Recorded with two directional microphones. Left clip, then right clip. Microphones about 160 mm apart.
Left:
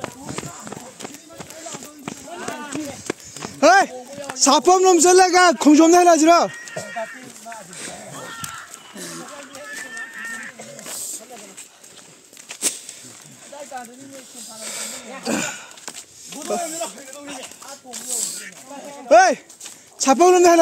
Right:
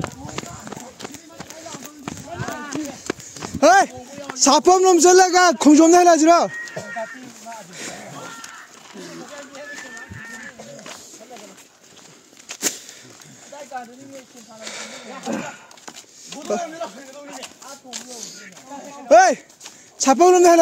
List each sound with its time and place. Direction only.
0.0 s run: 15° right (ahead or behind)
2.2 s run: centre (ahead or behind)
2.7 s clip-clop: 10° right (ahead or behind)
4.4 s a man's voice: 30° right (ahead or behind)
6.7 s a sound: 45° left (ahead or behind)
7.7 s a sound: 30° right (ahead or behind)
12.5 s a sound: 45° right (ahead or behind)
13.7 s a sound: 10° right (ahead or behind)
14.6 s a man's voice: 20° right (ahead or behind)
16.3 s speech: 20° right (ahead or behind)
18.2 s snake: 65° left (ahead or behind)
19.0 s speech: 20° right (ahead or behind)